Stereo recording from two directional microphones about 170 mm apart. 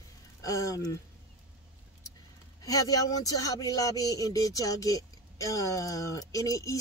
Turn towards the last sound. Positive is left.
turn(degrees=20)  # may be behind; listen again after turning